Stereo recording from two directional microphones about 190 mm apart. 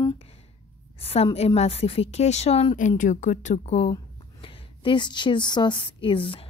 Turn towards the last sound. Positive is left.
turn(degrees=25)  # may be behind; listen again after turning